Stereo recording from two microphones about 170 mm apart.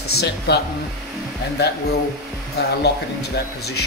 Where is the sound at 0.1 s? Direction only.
70° left (ahead or behind).